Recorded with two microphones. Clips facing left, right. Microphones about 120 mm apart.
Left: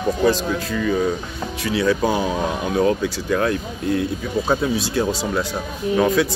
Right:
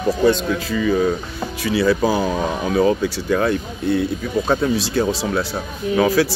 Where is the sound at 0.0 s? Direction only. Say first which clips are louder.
Right 2 dB; centre (ahead or behind).